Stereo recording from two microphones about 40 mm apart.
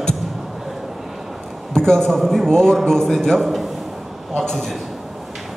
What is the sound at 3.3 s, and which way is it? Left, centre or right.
Speech, centre.